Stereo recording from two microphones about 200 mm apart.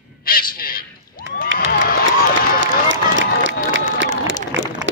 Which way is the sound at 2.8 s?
70° right (ahead or behind).